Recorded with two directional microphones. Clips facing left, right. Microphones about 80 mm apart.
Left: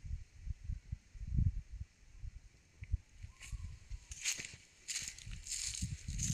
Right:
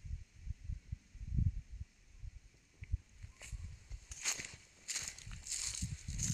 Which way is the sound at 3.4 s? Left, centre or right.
Right.